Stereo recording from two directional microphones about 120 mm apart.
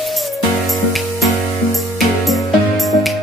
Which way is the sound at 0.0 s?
Centre (ahead or behind).